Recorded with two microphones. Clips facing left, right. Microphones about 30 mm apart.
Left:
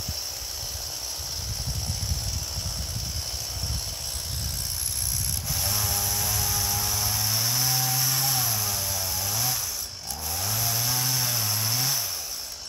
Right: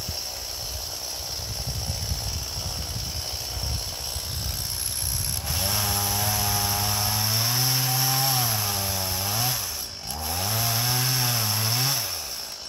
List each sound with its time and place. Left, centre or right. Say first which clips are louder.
5.5 s chainsaw: right 3 dB; right